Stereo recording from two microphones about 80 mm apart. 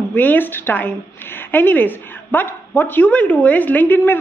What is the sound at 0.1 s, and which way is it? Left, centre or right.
Speech, left.